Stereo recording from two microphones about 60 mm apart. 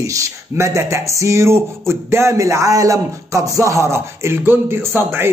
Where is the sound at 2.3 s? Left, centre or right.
Right.